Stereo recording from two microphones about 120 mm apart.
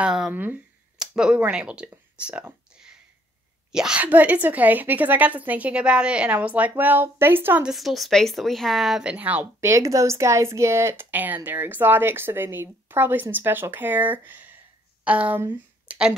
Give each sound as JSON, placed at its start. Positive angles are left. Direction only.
{"t": 0.0, "sound": "speech", "side_deg": -5}
{"t": 0.3, "sound": "speech", "side_deg": -15}
{"t": 1.9, "sound": "a sound", "side_deg": -10}
{"t": 3.7, "sound": "speech", "side_deg": -5}
{"t": 7.6, "sound": "speech", "side_deg": 0}